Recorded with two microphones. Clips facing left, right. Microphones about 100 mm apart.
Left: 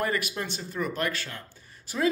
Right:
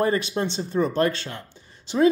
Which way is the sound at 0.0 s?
30° right (ahead or behind).